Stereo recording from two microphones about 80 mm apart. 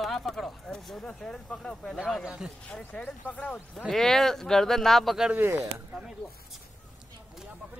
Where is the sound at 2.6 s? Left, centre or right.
Centre.